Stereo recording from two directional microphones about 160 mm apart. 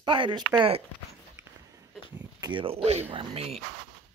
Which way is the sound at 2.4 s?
30° right (ahead or behind).